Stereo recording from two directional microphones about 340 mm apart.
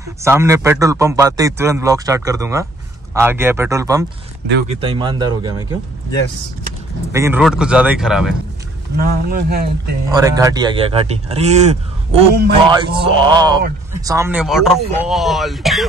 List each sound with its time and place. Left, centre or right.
0.2 s speech: centre
7.1 s speech: centre
8.9 s speech: right
10.1 s speech: centre